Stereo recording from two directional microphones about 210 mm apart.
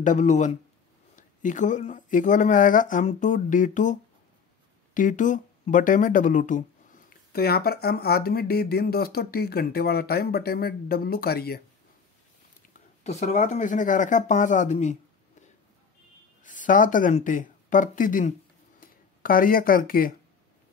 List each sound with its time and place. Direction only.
0.0 s speech: 35° left (ahead or behind)
13.0 s speech: 30° left (ahead or behind)
16.4 s speech: 40° left (ahead or behind)